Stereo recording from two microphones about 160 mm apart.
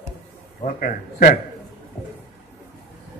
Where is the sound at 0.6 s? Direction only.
55° left (ahead or behind).